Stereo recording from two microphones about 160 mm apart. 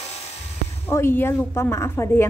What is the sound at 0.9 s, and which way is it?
A woman's voice, 15° left (ahead or behind).